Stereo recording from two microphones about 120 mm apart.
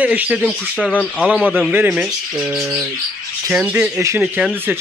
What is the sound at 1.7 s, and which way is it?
Speech, 15° right (ahead or behind).